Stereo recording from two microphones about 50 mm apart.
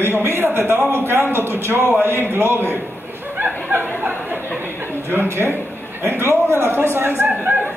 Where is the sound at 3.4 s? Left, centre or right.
Right.